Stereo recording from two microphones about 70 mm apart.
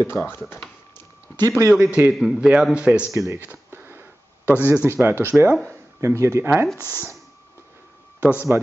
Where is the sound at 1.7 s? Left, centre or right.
Centre.